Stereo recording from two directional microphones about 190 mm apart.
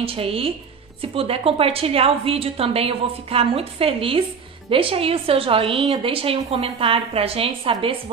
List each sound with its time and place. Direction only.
0.0 s a woman's voice: 30° right (ahead or behind)